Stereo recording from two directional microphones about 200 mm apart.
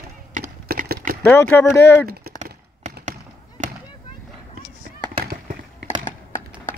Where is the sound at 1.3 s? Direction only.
10° left (ahead or behind).